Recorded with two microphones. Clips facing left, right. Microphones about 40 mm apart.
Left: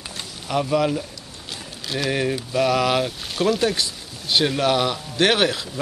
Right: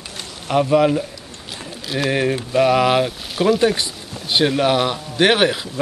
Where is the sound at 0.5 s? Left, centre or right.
Centre.